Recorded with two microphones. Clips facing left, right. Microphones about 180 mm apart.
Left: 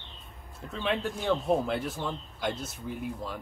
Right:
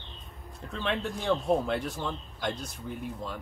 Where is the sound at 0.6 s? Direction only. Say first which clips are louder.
Left 1 dB; 5° left (ahead or behind).